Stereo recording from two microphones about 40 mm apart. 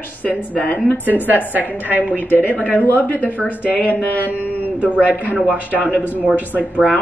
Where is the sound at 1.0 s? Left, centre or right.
Right.